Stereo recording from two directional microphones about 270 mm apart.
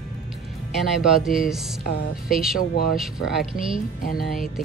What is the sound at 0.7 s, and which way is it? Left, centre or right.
Speech, centre.